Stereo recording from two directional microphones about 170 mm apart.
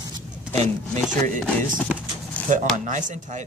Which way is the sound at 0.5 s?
40° right (ahead or behind).